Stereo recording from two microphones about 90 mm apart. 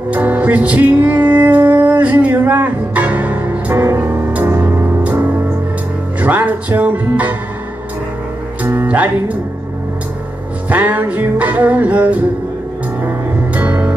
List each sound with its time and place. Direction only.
0.1 s music: 20° right (ahead or behind)
5.0 s music: 15° right (ahead or behind)
6.2 s speech: 20° right (ahead or behind)
8.6 s music: 20° right (ahead or behind)
10.7 s music: 20° right (ahead or behind)
13.6 s music: 20° right (ahead or behind)